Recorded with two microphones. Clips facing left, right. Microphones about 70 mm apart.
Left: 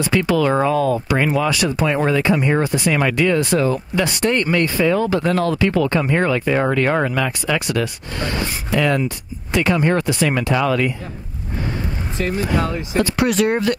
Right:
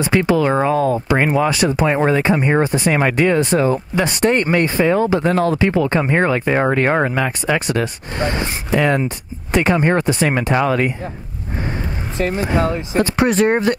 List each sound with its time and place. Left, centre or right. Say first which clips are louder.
0.0 s speech: right 2 dB; right
12.2 s speech: right 2 dB; right